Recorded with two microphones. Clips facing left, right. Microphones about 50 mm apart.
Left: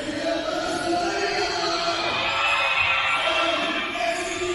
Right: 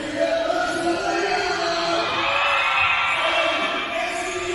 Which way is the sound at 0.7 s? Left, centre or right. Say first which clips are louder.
Right 2 dB; centre.